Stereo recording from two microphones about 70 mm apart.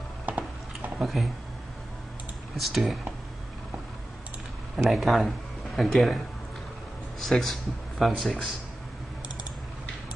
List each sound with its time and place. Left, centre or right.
0.3 s a sound: centre
0.9 s speech: centre
2.5 s speech: centre
4.7 s speech: centre
7.2 s speech: centre